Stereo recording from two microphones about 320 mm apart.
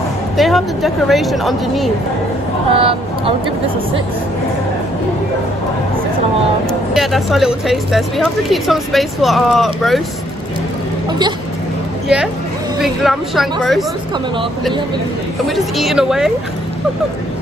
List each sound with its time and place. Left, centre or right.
0.4 s speech: centre
2.7 s speech: centre
6.7 s speech: centre
11.1 s speech: centre
12.8 s speech: centre
15.4 s speech: centre